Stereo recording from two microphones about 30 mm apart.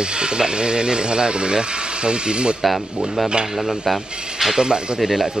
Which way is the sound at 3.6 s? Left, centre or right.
Centre.